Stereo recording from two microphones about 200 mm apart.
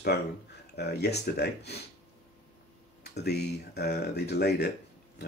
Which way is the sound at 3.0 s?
55° left (ahead or behind).